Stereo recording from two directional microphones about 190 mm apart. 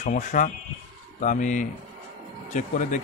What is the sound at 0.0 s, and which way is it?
Speech, 45° left (ahead or behind).